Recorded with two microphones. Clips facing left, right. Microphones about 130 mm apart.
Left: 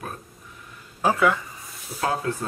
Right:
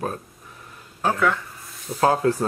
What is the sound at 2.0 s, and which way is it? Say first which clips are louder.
Speech: right 7 dB; 40° right (ahead or behind).